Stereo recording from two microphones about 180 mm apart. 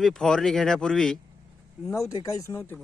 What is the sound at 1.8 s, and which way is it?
Speech, 15° left (ahead or behind).